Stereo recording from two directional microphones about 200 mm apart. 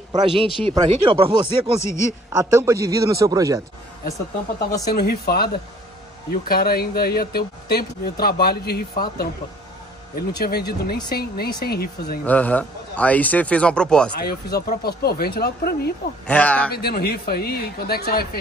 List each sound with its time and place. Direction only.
0.1 s speech: 25° right (ahead or behind)
1.8 s speech: 15° left (ahead or behind)
2.3 s speech: 15° right (ahead or behind)
4.9 s speech: 50° left (ahead or behind)
12.3 s speech: 10° left (ahead or behind)
14.2 s speech: 50° left (ahead or behind)
16.3 s speech: 5° left (ahead or behind)
16.7 s speech: 50° left (ahead or behind)